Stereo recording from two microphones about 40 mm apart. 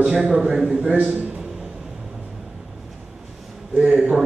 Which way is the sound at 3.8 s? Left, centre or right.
Right.